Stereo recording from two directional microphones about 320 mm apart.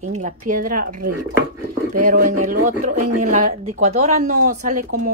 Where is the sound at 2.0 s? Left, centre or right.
Right.